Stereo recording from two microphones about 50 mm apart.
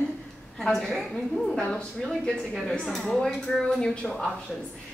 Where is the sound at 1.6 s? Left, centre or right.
Centre.